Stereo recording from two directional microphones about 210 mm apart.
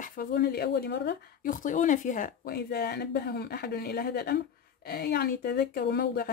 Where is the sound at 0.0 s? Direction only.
45° left (ahead or behind).